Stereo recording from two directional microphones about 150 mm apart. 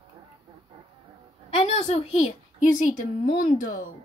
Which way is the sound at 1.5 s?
45° left (ahead or behind).